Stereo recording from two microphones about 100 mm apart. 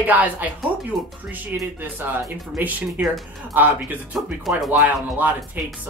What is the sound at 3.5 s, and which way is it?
Speech, 20° right (ahead or behind).